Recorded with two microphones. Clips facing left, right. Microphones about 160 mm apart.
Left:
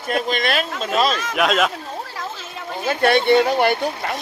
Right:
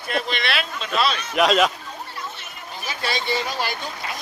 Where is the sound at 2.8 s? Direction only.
60° left (ahead or behind).